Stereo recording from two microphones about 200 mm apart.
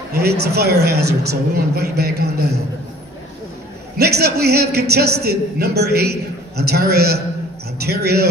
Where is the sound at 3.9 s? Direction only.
55° right (ahead or behind).